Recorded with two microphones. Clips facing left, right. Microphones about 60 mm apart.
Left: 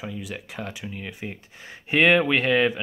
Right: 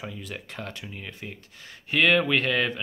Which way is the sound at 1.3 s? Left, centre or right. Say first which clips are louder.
Left 4 dB; left.